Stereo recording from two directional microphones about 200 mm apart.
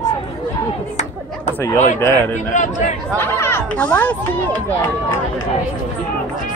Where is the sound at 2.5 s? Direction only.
40° left (ahead or behind).